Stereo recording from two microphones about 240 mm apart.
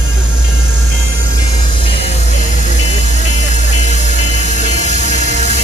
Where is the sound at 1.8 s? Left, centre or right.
Left.